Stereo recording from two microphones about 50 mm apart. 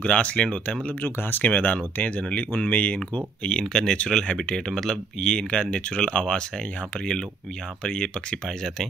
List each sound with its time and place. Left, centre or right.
0.0 s speech: left
1.0 s speech: left
1.4 s speech: left
3.4 s speech: centre
7.8 s speech: centre